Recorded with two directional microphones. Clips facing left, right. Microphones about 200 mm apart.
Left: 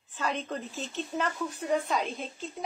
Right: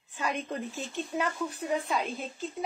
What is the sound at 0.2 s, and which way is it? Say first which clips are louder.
A woman's voice: even; 10° right (ahead or behind).